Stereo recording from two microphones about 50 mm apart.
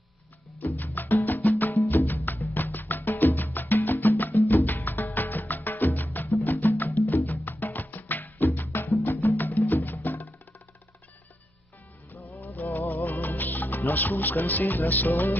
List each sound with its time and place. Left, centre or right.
0.6 s music: left
12.4 s music: left